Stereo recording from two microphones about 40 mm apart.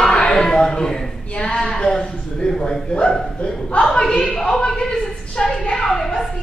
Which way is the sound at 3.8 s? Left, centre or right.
Centre.